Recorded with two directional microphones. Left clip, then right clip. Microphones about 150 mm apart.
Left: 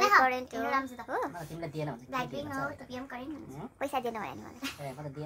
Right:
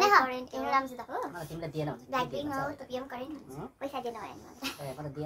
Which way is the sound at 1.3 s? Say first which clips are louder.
Right 2 dB; centre (ahead or behind).